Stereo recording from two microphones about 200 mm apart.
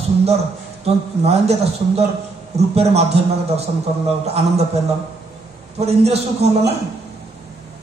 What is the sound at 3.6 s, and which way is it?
A man's voice, 30° right (ahead or behind).